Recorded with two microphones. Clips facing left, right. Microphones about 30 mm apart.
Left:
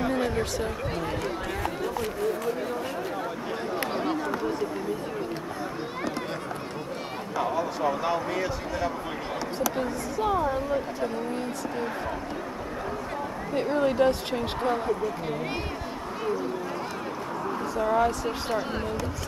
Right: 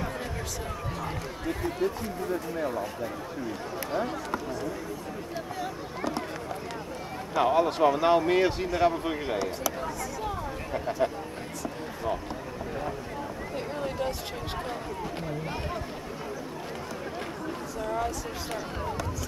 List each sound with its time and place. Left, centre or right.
0.0 s chatter: left
1.6 s speech: left
3.9 s speech: left
7.5 s speech: right
13.8 s speech: left
17.9 s speech: left